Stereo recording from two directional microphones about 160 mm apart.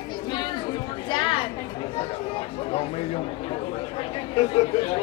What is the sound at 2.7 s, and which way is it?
A man's voice, 40° left (ahead or behind).